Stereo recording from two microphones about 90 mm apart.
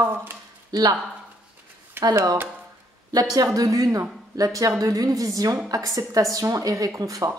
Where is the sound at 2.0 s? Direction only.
45° right (ahead or behind).